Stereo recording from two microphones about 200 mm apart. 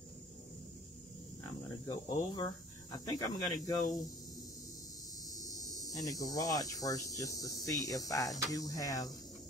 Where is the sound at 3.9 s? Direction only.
20° left (ahead or behind).